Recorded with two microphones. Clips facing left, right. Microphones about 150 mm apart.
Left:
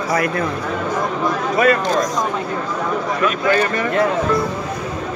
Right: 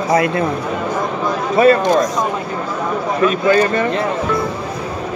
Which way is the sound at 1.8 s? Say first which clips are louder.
Right 4 dB; 20° right (ahead or behind).